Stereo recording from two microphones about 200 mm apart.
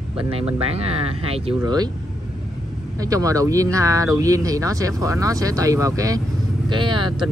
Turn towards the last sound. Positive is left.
turn(degrees=-25)  # may be behind; listen again after turning